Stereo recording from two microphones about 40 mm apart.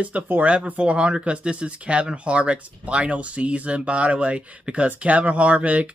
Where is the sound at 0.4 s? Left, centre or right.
Right.